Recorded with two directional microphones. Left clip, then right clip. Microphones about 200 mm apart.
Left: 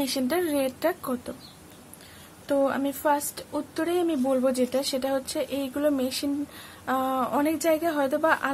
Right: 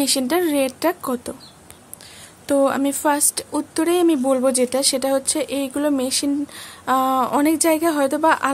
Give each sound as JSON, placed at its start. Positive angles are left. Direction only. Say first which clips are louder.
{"t": 0.0, "sound": "a woman's voice", "louder": "right 7 dB", "side_deg": -45}
{"t": 2.4, "sound": "a woman's voice", "louder": "right 7 dB", "side_deg": -45}